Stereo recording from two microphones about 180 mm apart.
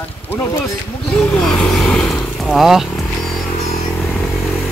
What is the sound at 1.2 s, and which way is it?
Speech, centre (ahead or behind).